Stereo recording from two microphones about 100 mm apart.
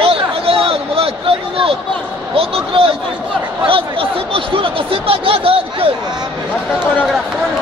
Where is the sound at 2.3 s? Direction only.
70° right (ahead or behind).